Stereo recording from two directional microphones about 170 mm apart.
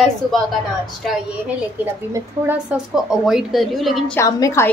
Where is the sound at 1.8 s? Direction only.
10° right (ahead or behind).